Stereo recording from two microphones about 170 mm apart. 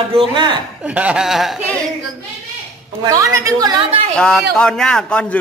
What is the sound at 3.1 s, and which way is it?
Speech, 20° right (ahead or behind).